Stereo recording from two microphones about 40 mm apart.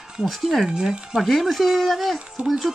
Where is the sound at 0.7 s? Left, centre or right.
Centre.